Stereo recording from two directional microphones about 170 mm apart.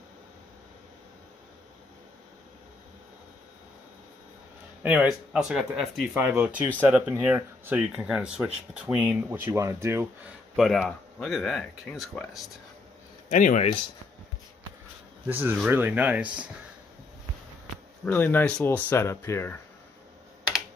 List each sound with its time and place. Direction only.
4.8 s speech: 5° right (ahead or behind)
10.5 s speech: centre (ahead or behind)
13.3 s speech: 45° left (ahead or behind)
15.2 s speech: 10° right (ahead or behind)
18.0 s speech: 10° left (ahead or behind)